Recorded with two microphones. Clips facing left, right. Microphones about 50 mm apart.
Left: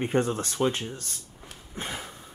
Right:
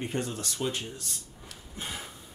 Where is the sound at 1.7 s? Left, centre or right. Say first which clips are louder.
Left 4 dB; left.